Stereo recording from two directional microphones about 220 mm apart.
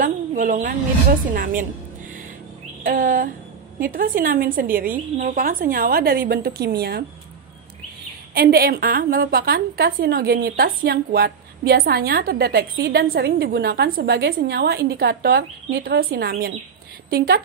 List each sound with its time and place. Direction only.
0.0 s a sound: 40° right (ahead or behind)
1.3 s a woman's voice: 40° right (ahead or behind)
2.8 s a woman's voice: 40° right (ahead or behind)
8.4 s a woman's voice: 45° right (ahead or behind)